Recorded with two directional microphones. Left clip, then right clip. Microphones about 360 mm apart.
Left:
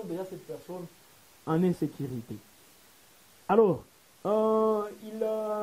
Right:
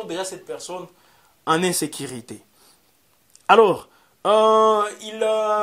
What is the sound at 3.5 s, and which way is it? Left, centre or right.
Speech, centre.